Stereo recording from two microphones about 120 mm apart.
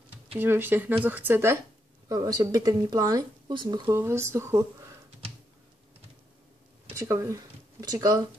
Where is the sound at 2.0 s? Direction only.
30° right (ahead or behind).